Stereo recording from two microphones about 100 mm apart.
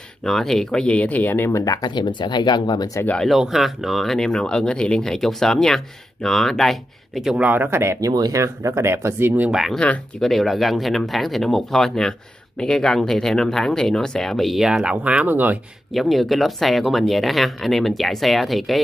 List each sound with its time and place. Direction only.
0.2 s speech: 5° left (ahead or behind); by 1.6 s 20° left (ahead or behind)
1.6 s speech: 40° left (ahead or behind)
3.3 s speech: centre (ahead or behind)
7.3 s speech: 20° right (ahead or behind)
8.1 s speech: 35° right (ahead or behind)
9.4 s speech: 5° right (ahead or behind)
15.9 s speech: centre (ahead or behind)